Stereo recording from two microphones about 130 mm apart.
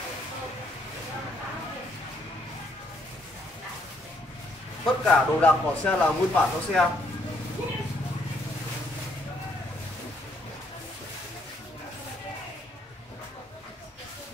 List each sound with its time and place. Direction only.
4.8 s speech: 10° left (ahead or behind)